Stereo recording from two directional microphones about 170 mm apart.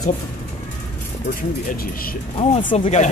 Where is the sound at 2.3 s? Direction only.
35° left (ahead or behind).